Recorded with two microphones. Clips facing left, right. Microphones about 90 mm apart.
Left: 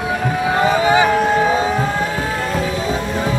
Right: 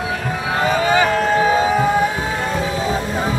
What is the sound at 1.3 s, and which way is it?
Music, 5° right (ahead or behind).